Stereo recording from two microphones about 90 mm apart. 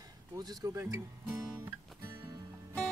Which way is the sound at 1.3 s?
40° right (ahead or behind).